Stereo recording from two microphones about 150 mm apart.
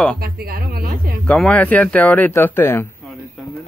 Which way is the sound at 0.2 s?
85° right.